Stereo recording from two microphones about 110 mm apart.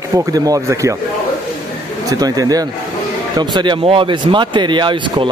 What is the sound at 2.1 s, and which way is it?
Speech, 35° right (ahead or behind).